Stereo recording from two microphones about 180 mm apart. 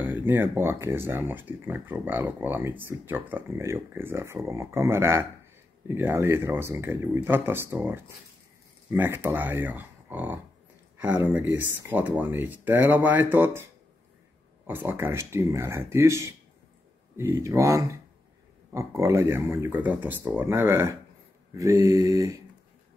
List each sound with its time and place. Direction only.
0.0 s speech: 10° right (ahead or behind)
14.7 s speech: 10° right (ahead or behind)